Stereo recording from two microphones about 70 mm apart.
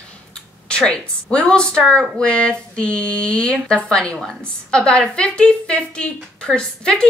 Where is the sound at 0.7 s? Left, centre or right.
Centre.